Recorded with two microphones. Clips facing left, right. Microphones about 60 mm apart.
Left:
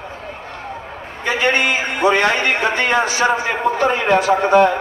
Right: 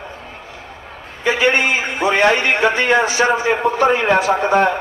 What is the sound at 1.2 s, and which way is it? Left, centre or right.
A man's voice, left.